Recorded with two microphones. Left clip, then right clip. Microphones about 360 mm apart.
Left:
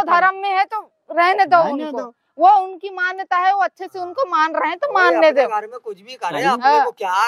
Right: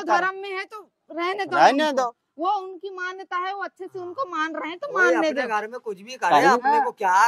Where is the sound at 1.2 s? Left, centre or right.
Left.